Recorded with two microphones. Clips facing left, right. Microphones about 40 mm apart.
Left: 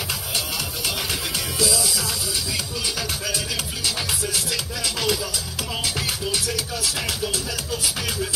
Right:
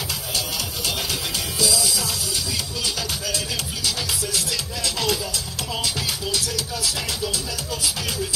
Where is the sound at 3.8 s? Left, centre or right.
Left.